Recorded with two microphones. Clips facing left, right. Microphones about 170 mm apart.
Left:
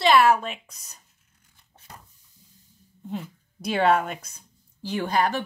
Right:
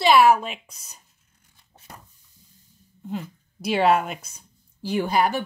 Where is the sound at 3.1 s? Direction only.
5° right (ahead or behind).